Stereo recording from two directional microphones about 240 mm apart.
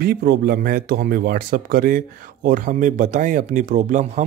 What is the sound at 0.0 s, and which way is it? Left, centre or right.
Speech, right.